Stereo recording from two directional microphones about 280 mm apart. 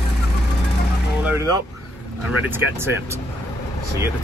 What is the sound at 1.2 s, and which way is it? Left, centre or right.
Vehicle, centre.